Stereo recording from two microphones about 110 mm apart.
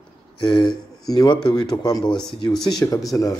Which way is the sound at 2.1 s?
5° left (ahead or behind).